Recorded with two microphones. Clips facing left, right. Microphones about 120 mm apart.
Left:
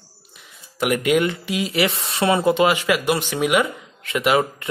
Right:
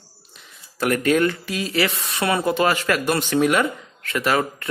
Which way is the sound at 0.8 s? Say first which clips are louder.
Even; 15° left (ahead or behind).